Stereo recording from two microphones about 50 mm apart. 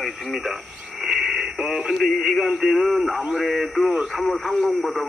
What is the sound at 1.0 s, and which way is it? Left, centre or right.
Radio, centre.